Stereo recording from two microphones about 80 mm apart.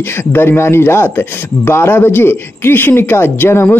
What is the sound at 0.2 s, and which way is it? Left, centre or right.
Speech, left.